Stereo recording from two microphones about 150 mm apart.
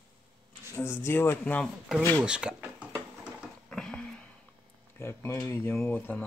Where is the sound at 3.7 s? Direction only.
5° left (ahead or behind).